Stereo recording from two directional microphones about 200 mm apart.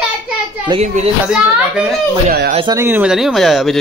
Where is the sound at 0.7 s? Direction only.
30° right (ahead or behind).